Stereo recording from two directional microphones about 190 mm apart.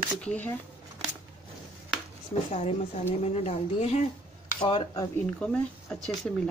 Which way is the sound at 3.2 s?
35° left (ahead or behind).